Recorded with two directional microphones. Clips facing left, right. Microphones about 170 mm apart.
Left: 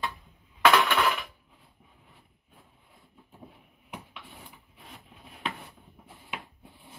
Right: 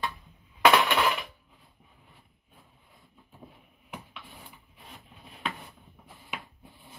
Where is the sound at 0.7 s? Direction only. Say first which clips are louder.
Even; 15° right (ahead or behind).